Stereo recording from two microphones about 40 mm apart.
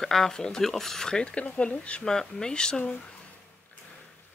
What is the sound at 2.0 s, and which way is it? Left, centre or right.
Speech, centre.